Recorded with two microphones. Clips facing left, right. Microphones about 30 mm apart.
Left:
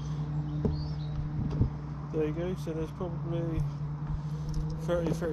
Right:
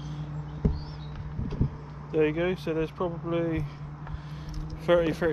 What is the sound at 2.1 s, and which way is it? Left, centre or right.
Speech, right.